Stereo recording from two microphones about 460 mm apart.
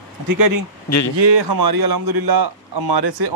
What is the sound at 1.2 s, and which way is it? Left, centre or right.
A man's voice, right.